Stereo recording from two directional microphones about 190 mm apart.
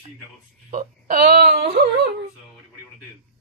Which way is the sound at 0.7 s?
50° right (ahead or behind).